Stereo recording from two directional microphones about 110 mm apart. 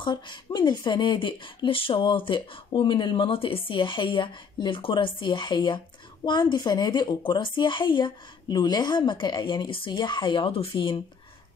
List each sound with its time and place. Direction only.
0.0 s speech: 45° left (ahead or behind)